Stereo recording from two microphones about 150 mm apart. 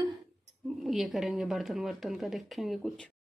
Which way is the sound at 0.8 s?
Centre (ahead or behind).